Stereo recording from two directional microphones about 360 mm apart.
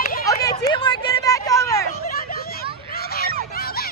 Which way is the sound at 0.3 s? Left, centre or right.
Centre.